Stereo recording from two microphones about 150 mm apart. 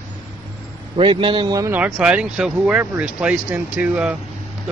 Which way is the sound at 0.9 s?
35° right (ahead or behind).